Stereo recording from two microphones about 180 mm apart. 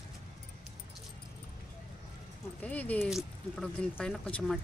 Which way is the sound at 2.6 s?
10° left (ahead or behind).